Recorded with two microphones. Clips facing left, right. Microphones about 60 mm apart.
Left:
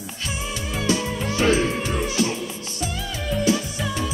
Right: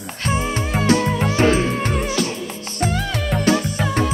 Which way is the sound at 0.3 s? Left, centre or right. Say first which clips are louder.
Right 9 dB; right.